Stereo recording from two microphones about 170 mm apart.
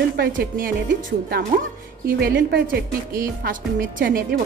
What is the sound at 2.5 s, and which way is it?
Speech, 75° right (ahead or behind).